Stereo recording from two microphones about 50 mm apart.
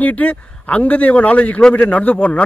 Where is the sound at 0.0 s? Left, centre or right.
Left.